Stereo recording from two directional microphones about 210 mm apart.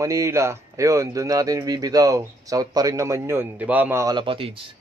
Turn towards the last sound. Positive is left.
turn(degrees=-25)  # may be behind; listen again after turning